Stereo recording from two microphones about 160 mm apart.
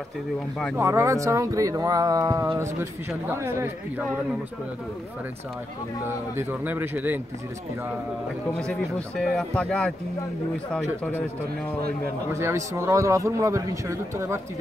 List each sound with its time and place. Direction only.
0.7 s a man's voice: 15° right (ahead or behind)
6.0 s a man's voice: 15° right (ahead or behind)
8.5 s speech: 5° left (ahead or behind)
12.3 s a man's voice: 15° right (ahead or behind)